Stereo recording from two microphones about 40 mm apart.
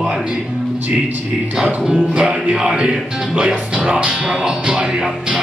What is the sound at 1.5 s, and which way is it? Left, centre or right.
Music, centre.